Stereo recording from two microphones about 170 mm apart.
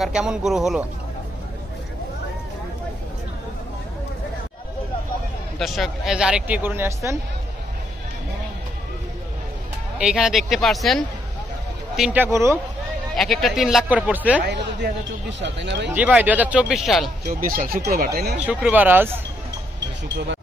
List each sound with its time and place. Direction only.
0.0 s speech: 5° right (ahead or behind)
5.6 s speech: centre (ahead or behind)
9.9 s speech: 5° right (ahead or behind)
12.0 s speech: 10° right (ahead or behind)
13.1 s speech: centre (ahead or behind)
14.4 s speech: 80° right
15.9 s speech: 10° right (ahead or behind)
17.3 s speech: 55° right (ahead or behind)
18.4 s speech: 10° right (ahead or behind)